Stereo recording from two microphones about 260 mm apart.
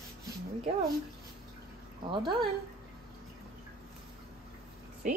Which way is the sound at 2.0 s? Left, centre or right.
Centre.